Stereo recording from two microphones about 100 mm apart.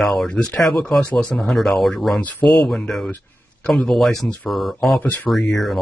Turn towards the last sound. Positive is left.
turn(degrees=0)  # may be behind; listen again after turning